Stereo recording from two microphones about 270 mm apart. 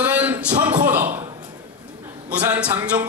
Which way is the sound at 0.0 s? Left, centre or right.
Centre.